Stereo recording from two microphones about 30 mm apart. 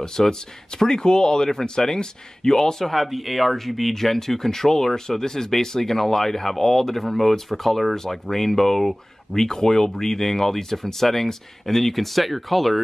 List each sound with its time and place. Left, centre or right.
0.3 s speech: left
2.9 s speech: centre